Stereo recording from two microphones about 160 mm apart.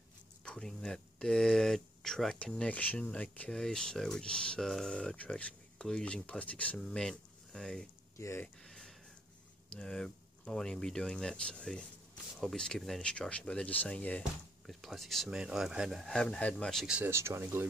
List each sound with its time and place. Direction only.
0.5 s speech: 5° left (ahead or behind)
8.2 s speech: 15° left (ahead or behind)
8.6 s a sound: centre (ahead or behind)
9.7 s speech: 5° left (ahead or behind); by 17.6 s 15° right (ahead or behind)